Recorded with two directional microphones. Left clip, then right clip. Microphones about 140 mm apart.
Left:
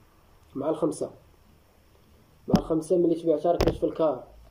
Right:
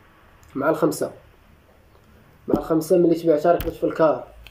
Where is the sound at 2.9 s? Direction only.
5° left (ahead or behind).